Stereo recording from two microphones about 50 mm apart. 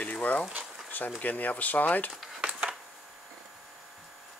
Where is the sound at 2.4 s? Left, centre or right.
Right.